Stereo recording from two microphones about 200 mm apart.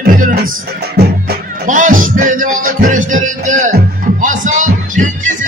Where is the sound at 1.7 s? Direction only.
40° right (ahead or behind).